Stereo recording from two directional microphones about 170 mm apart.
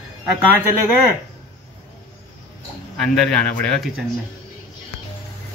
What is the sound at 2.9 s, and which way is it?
Speech, centre (ahead or behind).